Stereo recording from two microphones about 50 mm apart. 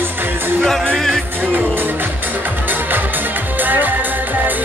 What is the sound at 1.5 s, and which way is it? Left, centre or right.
Music, right.